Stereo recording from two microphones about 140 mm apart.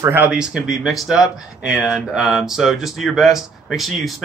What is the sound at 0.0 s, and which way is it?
Speech, 15° right (ahead or behind).